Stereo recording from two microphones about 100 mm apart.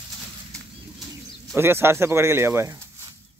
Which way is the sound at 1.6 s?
25° right (ahead or behind).